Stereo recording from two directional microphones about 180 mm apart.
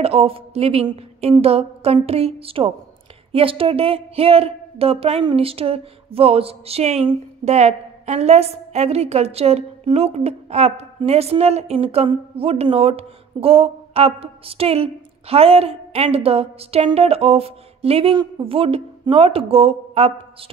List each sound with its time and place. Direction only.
0.0 s speech: 35° right (ahead or behind)